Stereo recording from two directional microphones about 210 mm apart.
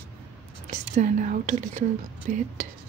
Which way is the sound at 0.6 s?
35° right (ahead or behind).